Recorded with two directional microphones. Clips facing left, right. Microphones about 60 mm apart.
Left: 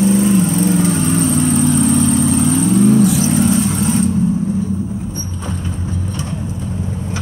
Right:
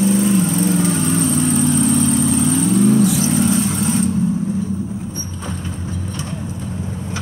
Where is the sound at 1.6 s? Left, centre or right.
Left.